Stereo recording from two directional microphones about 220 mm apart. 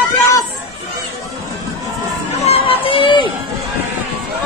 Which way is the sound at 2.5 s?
25° left (ahead or behind).